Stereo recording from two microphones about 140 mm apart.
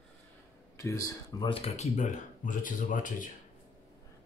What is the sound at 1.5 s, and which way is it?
Speech, 50° left (ahead or behind).